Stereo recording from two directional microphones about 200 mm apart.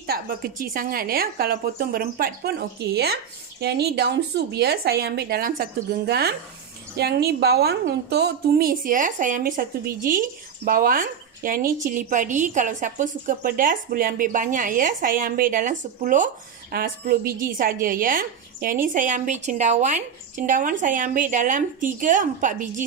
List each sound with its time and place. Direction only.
0.0 s a woman's voice: 50° right (ahead or behind)